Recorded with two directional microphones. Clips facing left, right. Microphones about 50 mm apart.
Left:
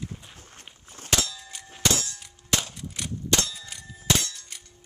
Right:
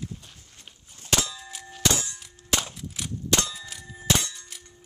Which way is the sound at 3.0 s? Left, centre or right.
Centre.